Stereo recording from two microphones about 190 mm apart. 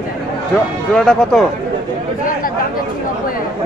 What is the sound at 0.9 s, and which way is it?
Speech, 5° left (ahead or behind).